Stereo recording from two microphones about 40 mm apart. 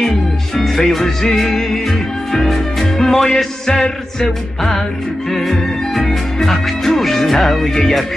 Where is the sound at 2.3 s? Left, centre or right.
Centre.